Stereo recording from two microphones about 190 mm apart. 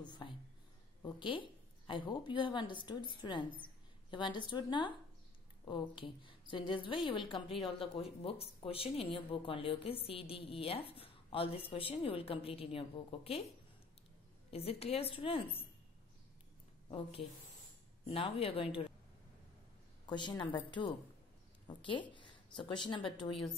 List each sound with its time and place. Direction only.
0.0 s a sound: 25° left (ahead or behind)
1.0 s a woman's voice: 25° left (ahead or behind)
14.5 s a woman's voice: 30° left (ahead or behind)
16.9 s a woman's voice: 30° left (ahead or behind)
20.1 s a woman's voice: 25° left (ahead or behind)